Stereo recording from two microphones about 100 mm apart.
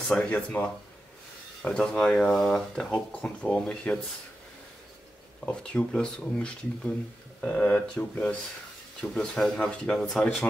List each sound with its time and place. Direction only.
0.1 s speech: 10° left (ahead or behind)
5.4 s speech: 10° left (ahead or behind)
7.4 s speech: 20° left (ahead or behind); by 10.3 s 5° left (ahead or behind)